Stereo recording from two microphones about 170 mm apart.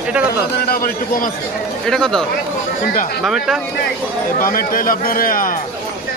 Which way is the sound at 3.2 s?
Centre (ahead or behind).